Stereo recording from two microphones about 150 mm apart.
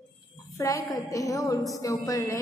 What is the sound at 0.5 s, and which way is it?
A woman's voice, 20° left (ahead or behind).